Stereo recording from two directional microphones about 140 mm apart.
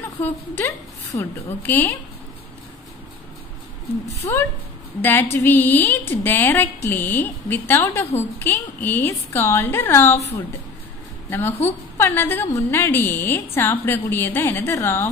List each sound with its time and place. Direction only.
0.2 s a woman's voice: 15° left (ahead or behind)
4.2 s a woman's voice: 20° left (ahead or behind)
11.2 s a woman's voice: 15° left (ahead or behind)